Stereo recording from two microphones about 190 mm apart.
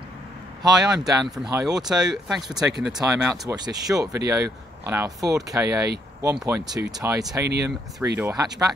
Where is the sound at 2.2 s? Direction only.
Centre (ahead or behind).